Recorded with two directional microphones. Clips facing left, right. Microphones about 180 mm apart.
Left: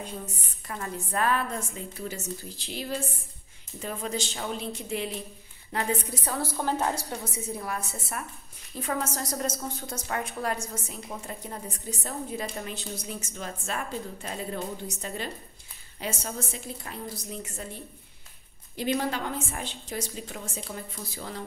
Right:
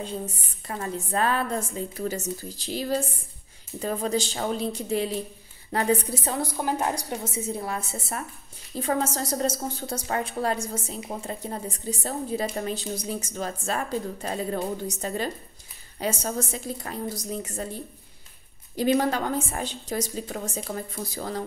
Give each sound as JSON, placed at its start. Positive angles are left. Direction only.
{"t": 0.7, "sound": "a woman's voice", "side_deg": -30}
{"t": 6.2, "sound": "a woman's voice", "side_deg": -20}
{"t": 18.8, "sound": "a woman's voice", "side_deg": -45}